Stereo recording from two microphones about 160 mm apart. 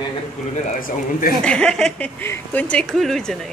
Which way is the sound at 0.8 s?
60° left (ahead or behind).